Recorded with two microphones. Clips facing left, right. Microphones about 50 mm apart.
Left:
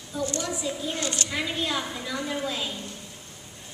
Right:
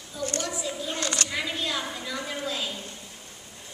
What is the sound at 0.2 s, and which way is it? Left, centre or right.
Speech, centre.